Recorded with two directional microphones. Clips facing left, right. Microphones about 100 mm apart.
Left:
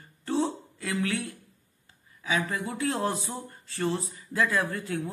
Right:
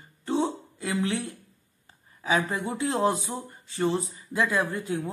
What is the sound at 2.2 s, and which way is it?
A woman's voice, 35° right (ahead or behind).